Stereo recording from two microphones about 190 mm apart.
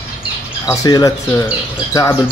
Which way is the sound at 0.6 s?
20° left (ahead or behind).